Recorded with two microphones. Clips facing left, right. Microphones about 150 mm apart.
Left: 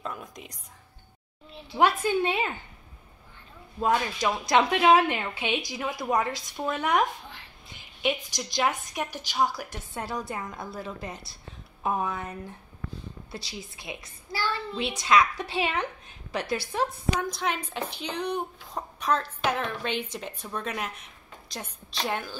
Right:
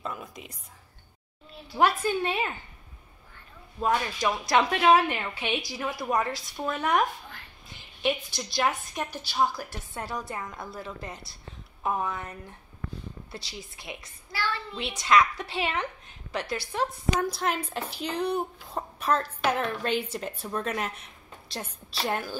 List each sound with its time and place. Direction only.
0.0 s whispering: 5° right (ahead or behind)
1.5 s a woman's voice: 20° left (ahead or behind)
3.8 s a woman's voice: 20° left (ahead or behind)
14.3 s a child's voice: 35° left (ahead or behind)
14.8 s a woman's voice: 20° left (ahead or behind)
17.2 s speech: 5° right (ahead or behind)